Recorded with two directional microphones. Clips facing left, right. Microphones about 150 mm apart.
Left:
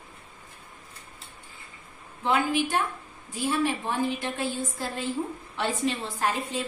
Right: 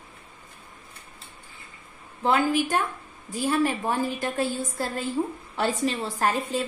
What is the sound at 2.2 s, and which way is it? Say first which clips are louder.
A woman's voice: right 2 dB; 45° right (ahead or behind).